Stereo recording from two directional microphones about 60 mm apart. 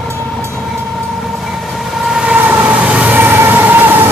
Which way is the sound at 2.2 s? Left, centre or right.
Right.